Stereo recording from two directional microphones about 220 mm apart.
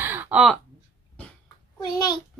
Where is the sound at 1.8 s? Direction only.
20° left (ahead or behind).